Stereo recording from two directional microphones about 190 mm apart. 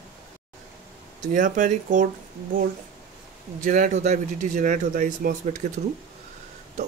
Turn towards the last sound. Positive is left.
turn(degrees=-50)  # may be behind; listen again after turning